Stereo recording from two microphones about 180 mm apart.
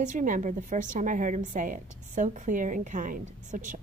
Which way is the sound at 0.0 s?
45° right (ahead or behind).